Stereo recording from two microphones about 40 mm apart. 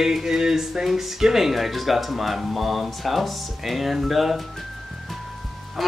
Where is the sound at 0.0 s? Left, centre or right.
Centre.